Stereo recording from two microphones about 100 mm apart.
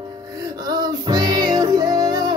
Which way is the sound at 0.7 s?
45° right (ahead or behind).